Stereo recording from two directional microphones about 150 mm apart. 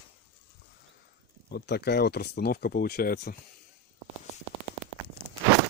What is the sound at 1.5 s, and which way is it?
Speech, 90° left.